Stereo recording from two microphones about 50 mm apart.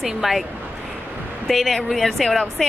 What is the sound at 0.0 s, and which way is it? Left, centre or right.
Speech, centre.